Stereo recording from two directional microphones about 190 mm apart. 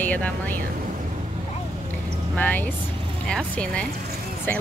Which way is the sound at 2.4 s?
10° left (ahead or behind).